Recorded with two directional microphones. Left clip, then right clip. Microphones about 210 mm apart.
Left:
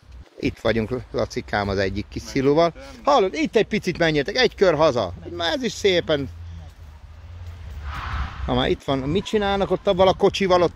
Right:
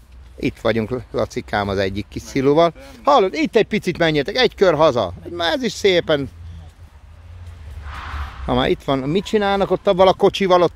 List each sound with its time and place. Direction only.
0.4 s speech: 20° right (ahead or behind)
7.8 s a sound: 50° right (ahead or behind)
8.5 s speech: 25° right (ahead or behind)